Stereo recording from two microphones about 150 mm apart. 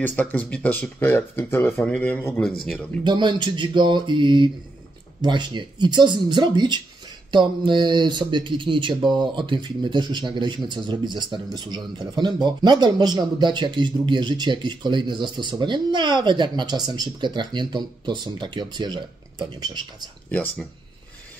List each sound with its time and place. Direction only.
0.0 s speech: 10° left (ahead or behind)
3.0 s a man's voice: 30° right (ahead or behind)
20.2 s speech: 10° left (ahead or behind)